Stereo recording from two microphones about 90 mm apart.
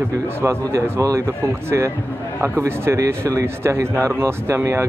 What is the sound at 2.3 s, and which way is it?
Speech, 25° right (ahead or behind).